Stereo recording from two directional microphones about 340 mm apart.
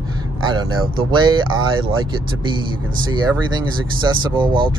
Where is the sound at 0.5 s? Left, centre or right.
Centre.